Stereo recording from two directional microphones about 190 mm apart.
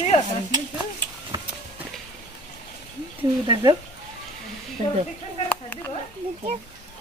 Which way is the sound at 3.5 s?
20° right (ahead or behind).